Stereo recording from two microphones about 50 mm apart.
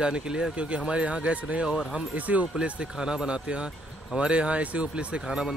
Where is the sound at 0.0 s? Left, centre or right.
Centre.